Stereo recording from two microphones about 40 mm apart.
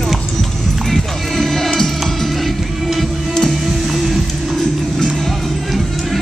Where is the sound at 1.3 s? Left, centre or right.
Centre.